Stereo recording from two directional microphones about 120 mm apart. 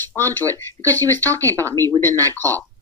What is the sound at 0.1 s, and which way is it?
Speech, 15° left (ahead or behind).